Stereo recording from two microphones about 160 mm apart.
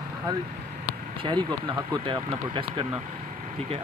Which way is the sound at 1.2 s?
30° right (ahead or behind).